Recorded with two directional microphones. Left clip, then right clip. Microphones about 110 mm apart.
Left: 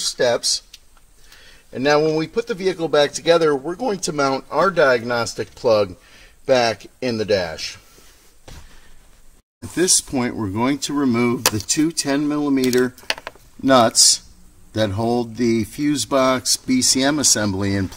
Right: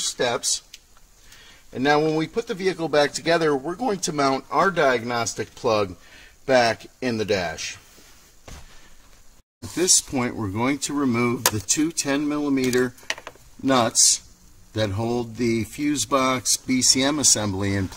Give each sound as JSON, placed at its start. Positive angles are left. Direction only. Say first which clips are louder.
{"t": 0.2, "sound": "speech", "louder": "left 6 dB", "side_deg": -30}
{"t": 1.7, "sound": "speech", "louder": "left 3 dB", "side_deg": -30}
{"t": 9.6, "sound": "speech", "louder": "left 2 dB", "side_deg": 15}
{"t": 13.2, "sound": "chopping", "louder": "left 4 dB", "side_deg": 30}
{"t": 14.7, "sound": "speech", "louder": "left 5 dB", "side_deg": 25}